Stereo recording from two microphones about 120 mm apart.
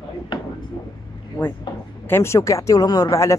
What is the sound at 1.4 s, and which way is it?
Speech, 30° left (ahead or behind).